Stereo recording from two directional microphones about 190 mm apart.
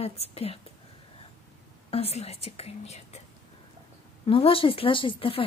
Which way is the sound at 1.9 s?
30° left (ahead or behind).